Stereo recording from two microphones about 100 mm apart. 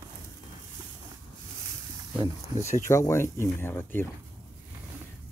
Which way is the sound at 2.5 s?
30° left (ahead or behind).